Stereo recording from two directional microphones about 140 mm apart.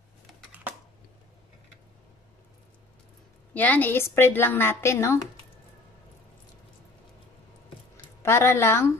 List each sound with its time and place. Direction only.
3.5 s a woman's voice: 10° left (ahead or behind)
8.2 s a woman's voice: 15° left (ahead or behind)